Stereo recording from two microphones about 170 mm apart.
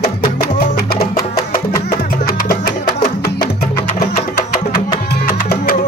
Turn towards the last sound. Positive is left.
turn(degrees=65)  # may be behind; listen again after turning